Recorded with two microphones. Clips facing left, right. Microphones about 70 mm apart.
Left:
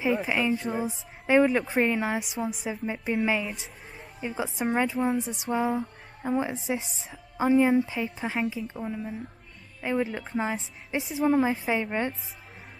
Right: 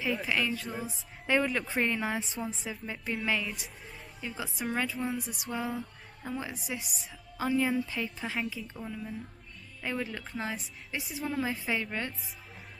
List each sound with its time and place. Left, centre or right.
0.0 s a woman's voice: left